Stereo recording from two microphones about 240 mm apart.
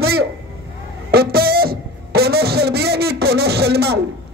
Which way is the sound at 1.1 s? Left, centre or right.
Right.